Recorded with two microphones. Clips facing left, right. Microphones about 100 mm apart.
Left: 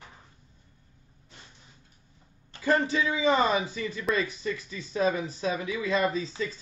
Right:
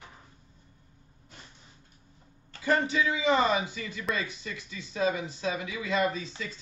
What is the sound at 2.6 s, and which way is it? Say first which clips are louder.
Speech: left 1 dB; 35° left (ahead or behind).